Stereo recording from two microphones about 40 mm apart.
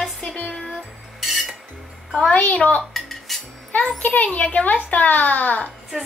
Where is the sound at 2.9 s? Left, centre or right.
Centre.